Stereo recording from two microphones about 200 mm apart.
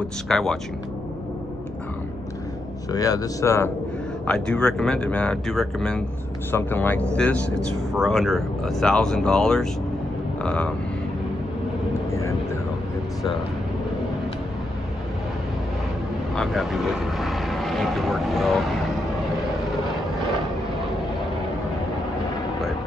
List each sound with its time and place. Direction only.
0.3 s speech: centre (ahead or behind)
2.9 s speech: 20° left (ahead or behind)
16.3 s speech: centre (ahead or behind)